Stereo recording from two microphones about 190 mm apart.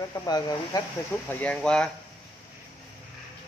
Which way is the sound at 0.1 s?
20° left (ahead or behind).